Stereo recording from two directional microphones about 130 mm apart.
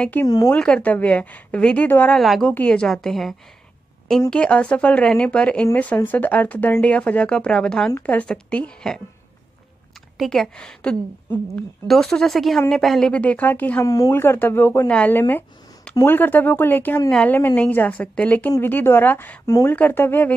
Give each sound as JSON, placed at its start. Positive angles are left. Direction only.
{"t": 0.0, "sound": "speech", "side_deg": 15}
{"t": 2.1, "sound": "speech", "side_deg": 0}
{"t": 2.4, "sound": "speech", "side_deg": 10}
{"t": 10.1, "sound": "speech", "side_deg": 0}
{"t": 13.8, "sound": "speech", "side_deg": 25}
{"t": 14.2, "sound": "speech", "side_deg": 15}